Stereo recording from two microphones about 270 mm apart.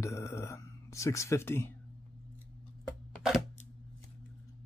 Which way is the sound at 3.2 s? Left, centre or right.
Centre.